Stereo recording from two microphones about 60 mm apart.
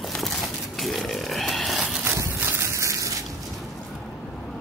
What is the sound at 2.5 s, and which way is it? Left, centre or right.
Rain, right.